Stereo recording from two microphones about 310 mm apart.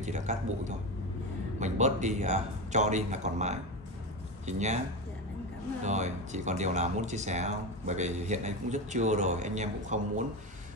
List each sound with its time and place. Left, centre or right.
0.0 s speech: right
5.9 s speech: right